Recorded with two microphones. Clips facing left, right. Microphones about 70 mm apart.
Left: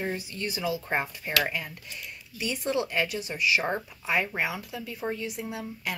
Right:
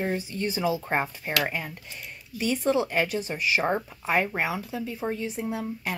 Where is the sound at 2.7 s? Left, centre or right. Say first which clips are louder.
Right 3 dB; right.